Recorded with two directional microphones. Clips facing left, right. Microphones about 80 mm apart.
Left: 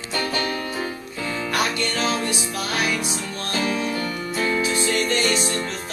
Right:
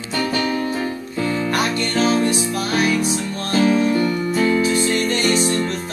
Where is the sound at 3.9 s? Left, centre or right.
Centre.